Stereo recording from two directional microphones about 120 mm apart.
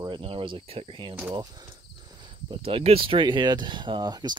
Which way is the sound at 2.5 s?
50° right (ahead or behind).